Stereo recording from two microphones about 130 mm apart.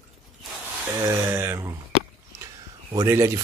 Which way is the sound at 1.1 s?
20° right (ahead or behind).